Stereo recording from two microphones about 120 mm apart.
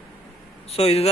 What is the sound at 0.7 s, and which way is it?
Speech, 55° left (ahead or behind).